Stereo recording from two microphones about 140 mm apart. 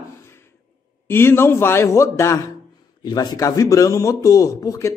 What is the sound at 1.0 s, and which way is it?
A man's voice, 15° left (ahead or behind).